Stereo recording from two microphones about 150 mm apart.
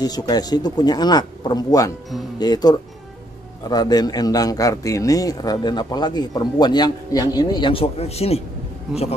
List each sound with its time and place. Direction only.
0.0 s a man's voice: 25° left (ahead or behind); by 8.4 s 45° left (ahead or behind)